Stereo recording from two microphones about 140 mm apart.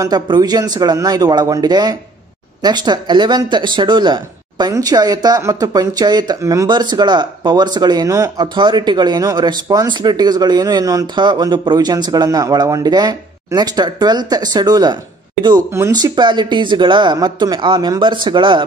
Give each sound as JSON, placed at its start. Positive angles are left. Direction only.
{"t": 0.0, "sound": "speech", "side_deg": -30}